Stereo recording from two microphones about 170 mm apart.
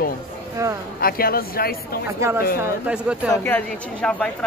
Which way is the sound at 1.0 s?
60° left (ahead or behind).